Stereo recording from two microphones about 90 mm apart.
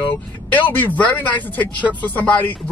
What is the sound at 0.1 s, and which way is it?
Speech, 20° left (ahead or behind).